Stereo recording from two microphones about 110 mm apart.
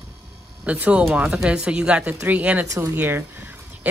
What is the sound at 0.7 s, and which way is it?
Speech, 15° right (ahead or behind).